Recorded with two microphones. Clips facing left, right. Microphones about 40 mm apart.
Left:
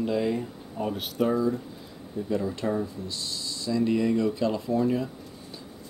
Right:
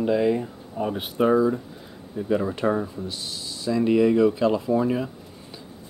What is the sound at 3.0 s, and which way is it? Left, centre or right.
Speech, right.